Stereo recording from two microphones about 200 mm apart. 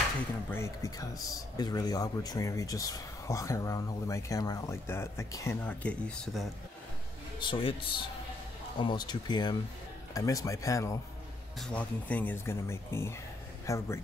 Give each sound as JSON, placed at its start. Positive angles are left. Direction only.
{"t": 0.5, "sound": "a man's voice", "side_deg": 15}
{"t": 7.3, "sound": "a man's voice", "side_deg": 25}